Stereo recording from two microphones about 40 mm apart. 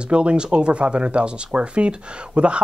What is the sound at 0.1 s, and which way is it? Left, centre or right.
Speech, right.